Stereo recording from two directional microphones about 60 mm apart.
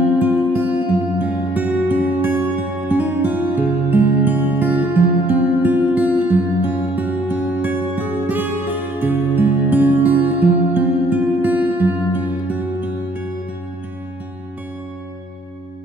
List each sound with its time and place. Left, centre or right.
0.2 s music: right